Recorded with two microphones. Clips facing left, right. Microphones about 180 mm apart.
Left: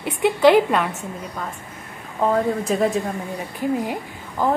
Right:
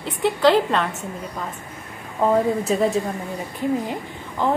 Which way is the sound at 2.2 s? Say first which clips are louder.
Right 1 dB; 5° right (ahead or behind).